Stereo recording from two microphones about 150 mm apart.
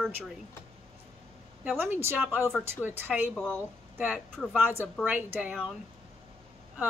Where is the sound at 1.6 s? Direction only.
15° right (ahead or behind).